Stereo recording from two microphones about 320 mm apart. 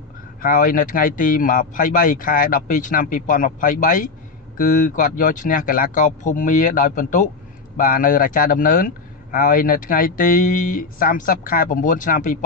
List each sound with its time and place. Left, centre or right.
0.4 s a man's voice: left